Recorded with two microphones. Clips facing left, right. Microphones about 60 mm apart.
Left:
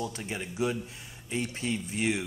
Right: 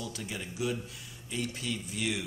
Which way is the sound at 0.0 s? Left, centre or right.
Left.